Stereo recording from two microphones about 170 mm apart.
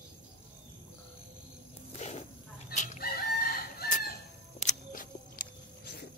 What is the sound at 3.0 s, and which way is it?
Chicken, 60° left (ahead or behind).